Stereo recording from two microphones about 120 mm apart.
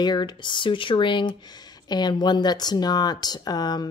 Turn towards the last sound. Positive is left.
turn(degrees=35)  # may be behind; listen again after turning